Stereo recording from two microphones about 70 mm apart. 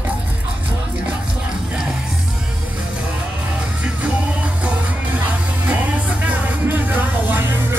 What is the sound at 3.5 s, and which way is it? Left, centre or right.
Music, centre.